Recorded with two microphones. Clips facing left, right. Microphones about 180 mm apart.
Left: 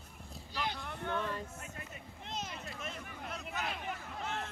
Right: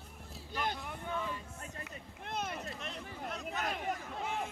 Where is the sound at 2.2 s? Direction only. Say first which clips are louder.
Right 4 dB; 55° right (ahead or behind).